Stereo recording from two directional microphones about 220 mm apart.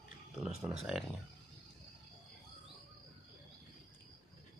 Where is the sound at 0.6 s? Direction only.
Centre (ahead or behind).